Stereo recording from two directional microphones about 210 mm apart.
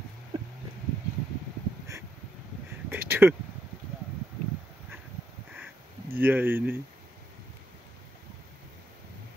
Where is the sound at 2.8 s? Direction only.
10° right (ahead or behind).